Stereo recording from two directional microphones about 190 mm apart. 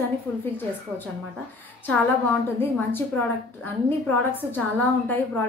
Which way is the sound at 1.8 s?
10° left (ahead or behind).